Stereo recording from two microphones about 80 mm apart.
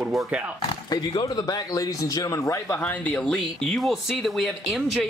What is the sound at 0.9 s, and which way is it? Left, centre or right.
Speech, left.